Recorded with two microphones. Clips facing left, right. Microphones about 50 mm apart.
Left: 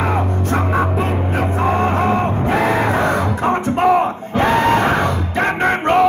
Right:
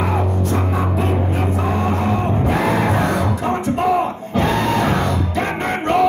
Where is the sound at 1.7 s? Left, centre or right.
Left.